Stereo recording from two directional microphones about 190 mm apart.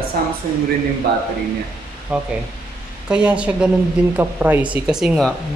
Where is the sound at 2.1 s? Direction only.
10° right (ahead or behind).